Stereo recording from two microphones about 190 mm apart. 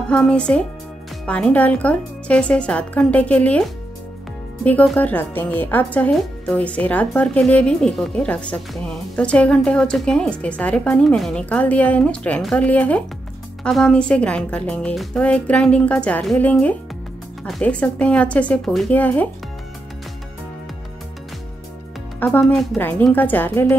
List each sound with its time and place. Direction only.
0.1 s a woman's voice: 5° left (ahead or behind)
4.6 s a woman's voice: 10° left (ahead or behind)
22.2 s a woman's voice: 5° left (ahead or behind)